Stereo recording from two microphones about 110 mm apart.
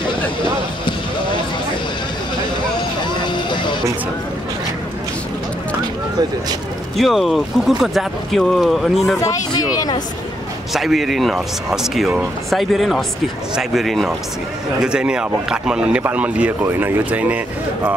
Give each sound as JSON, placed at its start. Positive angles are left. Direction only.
{"t": 0.4, "sound": "a sound", "side_deg": 50}
{"t": 3.2, "sound": "music", "side_deg": 45}
{"t": 7.0, "sound": "speech", "side_deg": 0}
{"t": 9.8, "sound": "speech", "side_deg": 40}
{"t": 10.7, "sound": "speech", "side_deg": 0}